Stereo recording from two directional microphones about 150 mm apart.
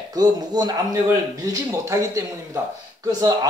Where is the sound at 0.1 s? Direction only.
25° right (ahead or behind).